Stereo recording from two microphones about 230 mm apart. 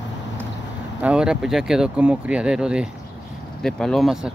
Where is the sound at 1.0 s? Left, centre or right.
Centre.